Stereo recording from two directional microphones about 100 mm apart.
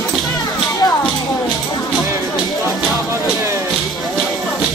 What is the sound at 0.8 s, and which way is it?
Music, 35° left (ahead or behind).